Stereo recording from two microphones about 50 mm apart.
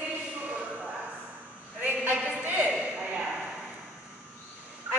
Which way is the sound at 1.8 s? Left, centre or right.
Right.